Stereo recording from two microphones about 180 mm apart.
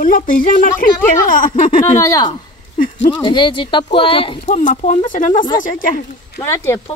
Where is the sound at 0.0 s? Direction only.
50° left (ahead or behind).